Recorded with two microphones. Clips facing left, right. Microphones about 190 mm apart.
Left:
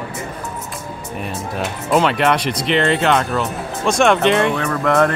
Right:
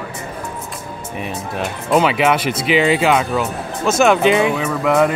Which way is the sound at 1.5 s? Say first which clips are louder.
Right 1 dB; centre (ahead or behind).